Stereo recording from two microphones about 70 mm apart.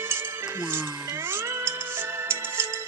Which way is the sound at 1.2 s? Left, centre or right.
Right.